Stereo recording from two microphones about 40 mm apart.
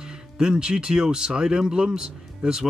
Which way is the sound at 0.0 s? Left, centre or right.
Centre.